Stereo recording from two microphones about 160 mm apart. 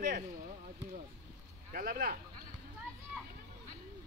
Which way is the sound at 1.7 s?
65° right (ahead or behind).